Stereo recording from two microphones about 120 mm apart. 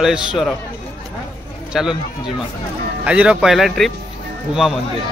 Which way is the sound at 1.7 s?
5° right (ahead or behind).